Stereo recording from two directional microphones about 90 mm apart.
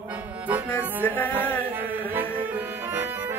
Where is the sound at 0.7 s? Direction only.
20° left (ahead or behind).